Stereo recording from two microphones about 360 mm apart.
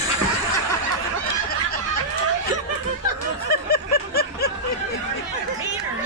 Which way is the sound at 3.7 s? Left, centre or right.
Left.